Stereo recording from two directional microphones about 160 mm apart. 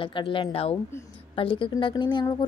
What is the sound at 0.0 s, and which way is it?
A woman's voice, 30° left (ahead or behind).